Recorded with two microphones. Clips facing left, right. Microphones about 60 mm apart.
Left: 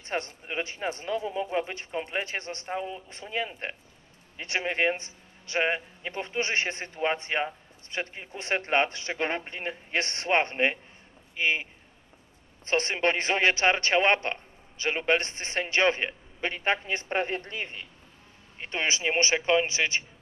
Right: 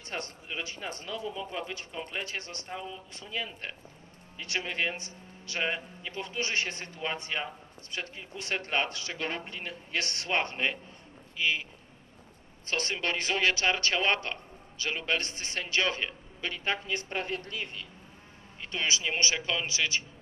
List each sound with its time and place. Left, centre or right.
0.0 s a man's voice: left
12.6 s a man's voice: left